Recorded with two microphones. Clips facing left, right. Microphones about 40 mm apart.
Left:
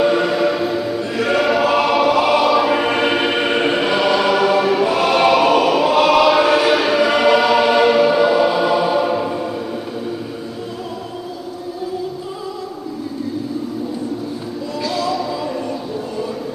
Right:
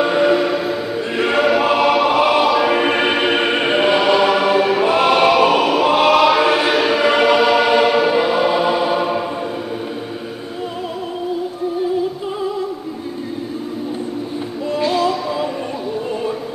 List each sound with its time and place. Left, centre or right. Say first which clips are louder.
0.0 s choir: right 1 dB; centre
1.1 s choir: right 1 dB; right
1.6 s music: even; centre
5.2 s choir: even; centre
14.7 s music: right 4 dB; right